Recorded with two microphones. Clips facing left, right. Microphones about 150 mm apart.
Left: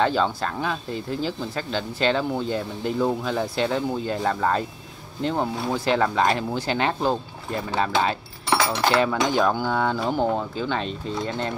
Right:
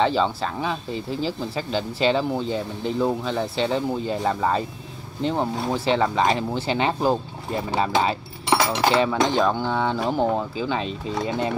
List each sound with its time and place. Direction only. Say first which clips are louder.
0.0 s speech: right 1 dB; centre (ahead or behind)
8.5 s cutlery: right 2 dB; 15° right (ahead or behind)
8.9 s speech: even; centre (ahead or behind)